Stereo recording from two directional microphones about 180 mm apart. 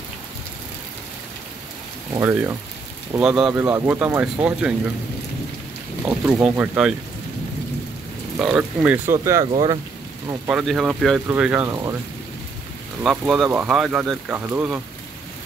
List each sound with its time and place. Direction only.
2.1 s speech: 15° right (ahead or behind)
3.2 s speech: 5° right (ahead or behind)
6.0 s speech: 10° right (ahead or behind)
8.4 s speech: 5° right (ahead or behind); by 9.8 s 25° right (ahead or behind)
10.5 s speech: centre (ahead or behind)
11.7 s speech: 15° right (ahead or behind)
13.0 s speech: 5° right (ahead or behind)